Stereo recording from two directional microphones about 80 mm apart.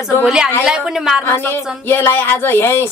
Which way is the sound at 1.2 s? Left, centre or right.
Left.